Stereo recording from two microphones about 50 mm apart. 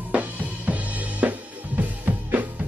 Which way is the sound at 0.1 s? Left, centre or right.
Right.